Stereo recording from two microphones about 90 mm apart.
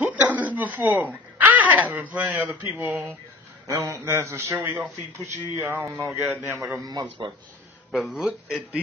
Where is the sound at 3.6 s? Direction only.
35° right (ahead or behind).